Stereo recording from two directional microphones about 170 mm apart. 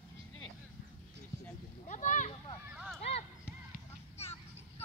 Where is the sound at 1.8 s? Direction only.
45° left (ahead or behind).